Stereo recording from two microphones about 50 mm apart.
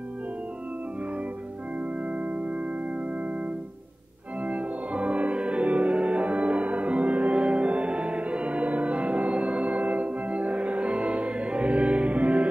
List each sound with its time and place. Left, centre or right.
1.8 s music: right
4.4 s music: right